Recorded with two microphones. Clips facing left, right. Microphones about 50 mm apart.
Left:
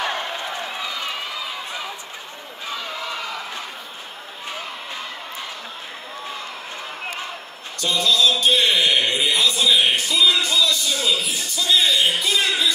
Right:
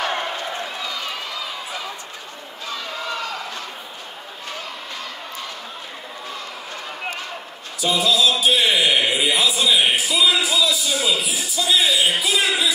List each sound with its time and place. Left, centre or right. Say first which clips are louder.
0.4 s run: even; left
7.8 s chant: right 1 dB; centre